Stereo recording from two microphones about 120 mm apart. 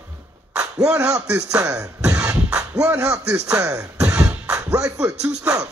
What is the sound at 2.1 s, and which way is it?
Music, 30° right (ahead or behind).